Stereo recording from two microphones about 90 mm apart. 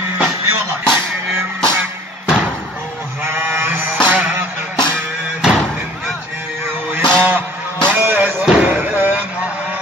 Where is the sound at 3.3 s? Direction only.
20° right (ahead or behind).